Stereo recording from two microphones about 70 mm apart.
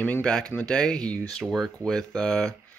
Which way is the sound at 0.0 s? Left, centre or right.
Centre.